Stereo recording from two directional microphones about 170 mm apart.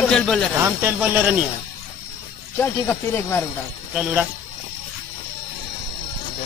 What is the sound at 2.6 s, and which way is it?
Speech, 10° left (ahead or behind).